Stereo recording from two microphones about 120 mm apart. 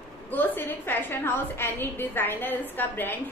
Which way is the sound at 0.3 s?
15° left (ahead or behind).